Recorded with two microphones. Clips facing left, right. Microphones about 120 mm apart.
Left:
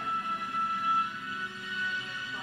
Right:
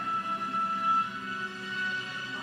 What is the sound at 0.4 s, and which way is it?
Music, 30° right (ahead or behind).